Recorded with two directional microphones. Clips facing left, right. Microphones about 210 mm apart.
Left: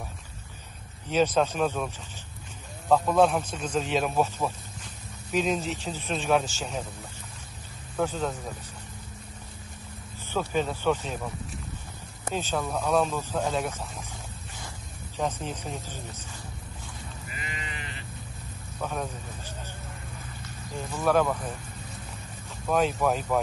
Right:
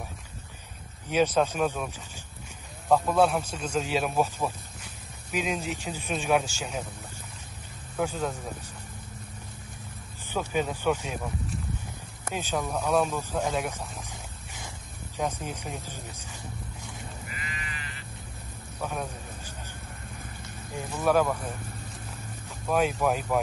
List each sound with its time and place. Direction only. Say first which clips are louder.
1.1 s speech: even; 10° right (ahead or behind)
2.9 s speech: left 1 dB; 5° right (ahead or behind)
8.0 s speech: left 1 dB; 10° right (ahead or behind)
10.5 s speech: even; 10° right (ahead or behind)
12.4 s speech: even; 10° right (ahead or behind)
15.4 s speech: left 1 dB; 10° right (ahead or behind)
17.3 s sheep: left 1 dB; 25° left (ahead or behind)
18.8 s a sound: left 1 dB; 10° right (ahead or behind)
20.7 s speech: even; 10° right (ahead or behind)
22.7 s speech: left 1 dB; 5° right (ahead or behind)